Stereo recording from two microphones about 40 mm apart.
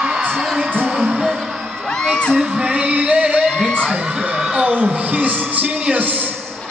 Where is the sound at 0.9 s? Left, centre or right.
Centre.